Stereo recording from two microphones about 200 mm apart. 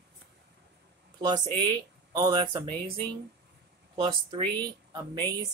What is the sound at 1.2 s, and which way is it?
Speech, 20° right (ahead or behind).